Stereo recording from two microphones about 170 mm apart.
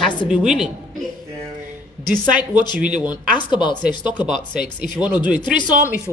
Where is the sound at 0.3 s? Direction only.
5° right (ahead or behind).